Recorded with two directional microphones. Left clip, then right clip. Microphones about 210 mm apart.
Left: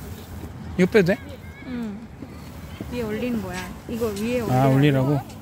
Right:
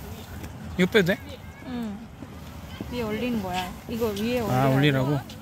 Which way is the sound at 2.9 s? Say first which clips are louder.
Left 2 dB; 45° right (ahead or behind).